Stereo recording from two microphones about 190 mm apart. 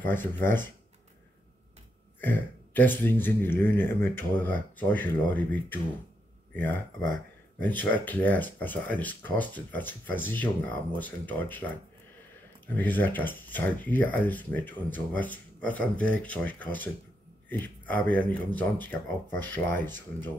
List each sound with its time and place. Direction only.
0.0 s speech: 10° left (ahead or behind)
2.1 s speech: 10° left (ahead or behind)
12.6 s speech: 10° left (ahead or behind)